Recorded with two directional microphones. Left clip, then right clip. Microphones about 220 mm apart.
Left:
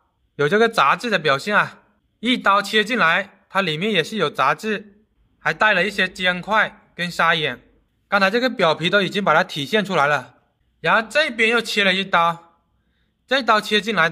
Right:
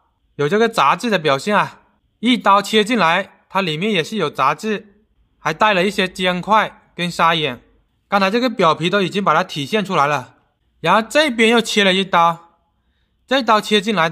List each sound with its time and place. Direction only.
0.4 s a man's voice: 10° right (ahead or behind)